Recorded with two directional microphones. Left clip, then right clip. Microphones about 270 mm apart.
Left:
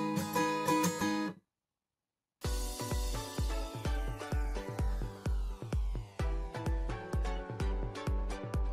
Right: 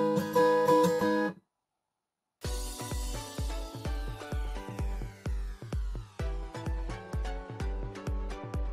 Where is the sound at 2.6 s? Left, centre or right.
Centre.